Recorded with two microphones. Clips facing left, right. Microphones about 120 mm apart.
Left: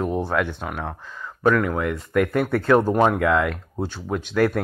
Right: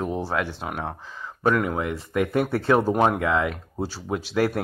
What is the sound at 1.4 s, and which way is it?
Speech, 15° right (ahead or behind).